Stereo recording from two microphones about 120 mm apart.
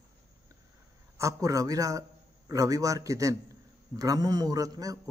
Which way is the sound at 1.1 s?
25° right (ahead or behind).